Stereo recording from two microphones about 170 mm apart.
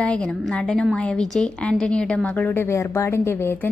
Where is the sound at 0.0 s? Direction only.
5° left (ahead or behind).